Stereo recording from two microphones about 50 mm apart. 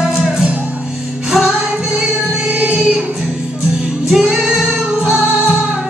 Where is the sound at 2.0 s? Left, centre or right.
Right.